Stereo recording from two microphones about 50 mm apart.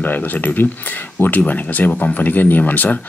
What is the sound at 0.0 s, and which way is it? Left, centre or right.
Speech, left.